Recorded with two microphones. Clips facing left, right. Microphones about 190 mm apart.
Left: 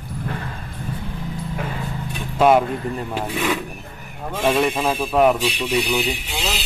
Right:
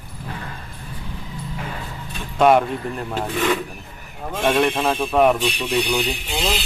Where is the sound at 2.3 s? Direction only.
Centre (ahead or behind).